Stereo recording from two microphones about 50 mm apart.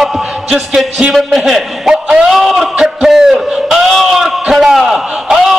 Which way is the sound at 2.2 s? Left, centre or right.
Centre.